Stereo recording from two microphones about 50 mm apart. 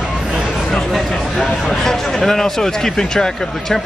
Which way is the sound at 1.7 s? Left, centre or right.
Centre.